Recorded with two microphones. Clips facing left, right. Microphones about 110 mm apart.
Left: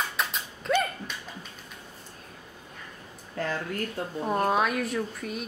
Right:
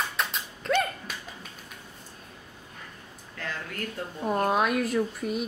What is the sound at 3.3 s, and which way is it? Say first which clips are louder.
Speech: left 6 dB; 35° left (ahead or behind).